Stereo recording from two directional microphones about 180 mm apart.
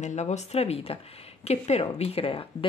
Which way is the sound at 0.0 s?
40° left (ahead or behind).